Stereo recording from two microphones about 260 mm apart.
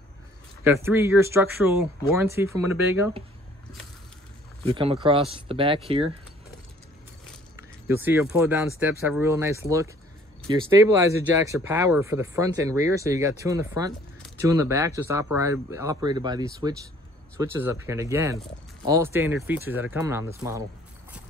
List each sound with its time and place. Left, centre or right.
0.7 s speech: centre
4.6 s speech: right
7.9 s speech: centre